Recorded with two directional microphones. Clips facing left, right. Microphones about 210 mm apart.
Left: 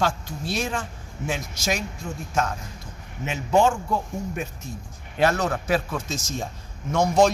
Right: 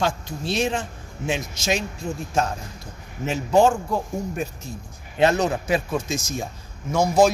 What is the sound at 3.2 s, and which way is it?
Speech, 35° right (ahead or behind).